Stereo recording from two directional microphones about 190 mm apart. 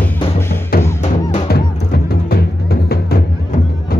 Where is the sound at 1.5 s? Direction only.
55° left (ahead or behind).